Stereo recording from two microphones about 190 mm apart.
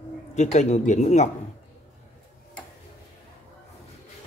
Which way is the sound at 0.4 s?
40° left (ahead or behind).